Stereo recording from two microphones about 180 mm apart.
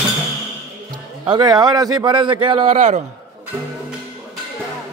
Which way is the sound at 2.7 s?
40° right (ahead or behind).